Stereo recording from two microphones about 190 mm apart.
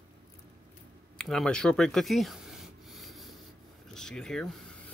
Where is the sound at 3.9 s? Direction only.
5° left (ahead or behind).